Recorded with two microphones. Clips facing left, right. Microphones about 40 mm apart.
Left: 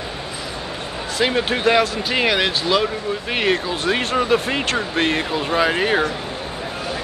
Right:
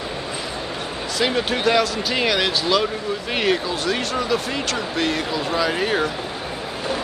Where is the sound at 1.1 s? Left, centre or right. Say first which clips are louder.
Left 2 dB; centre.